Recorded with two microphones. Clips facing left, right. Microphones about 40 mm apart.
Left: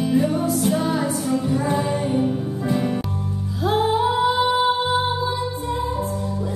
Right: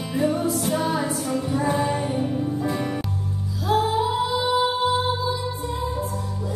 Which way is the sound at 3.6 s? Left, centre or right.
Left.